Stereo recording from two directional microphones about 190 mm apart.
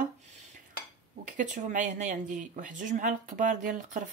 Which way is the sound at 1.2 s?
40° right (ahead or behind).